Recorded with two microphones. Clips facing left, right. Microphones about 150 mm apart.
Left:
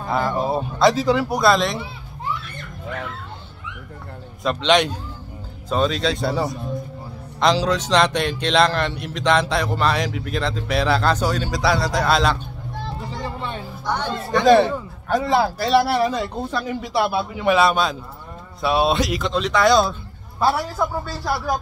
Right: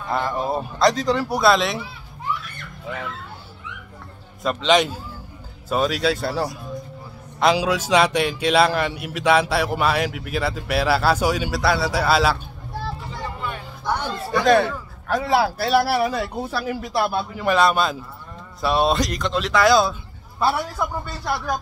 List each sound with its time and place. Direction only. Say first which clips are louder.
0.1 s a man's voice: left 2 dB; centre (ahead or behind)
4.4 s a man's voice: even; centre (ahead or behind)
13.0 s vehicle: left 2 dB; 30° left (ahead or behind)
13.8 s music: even; 5° right (ahead or behind)
15.0 s a man's voice: left 1 dB; centre (ahead or behind)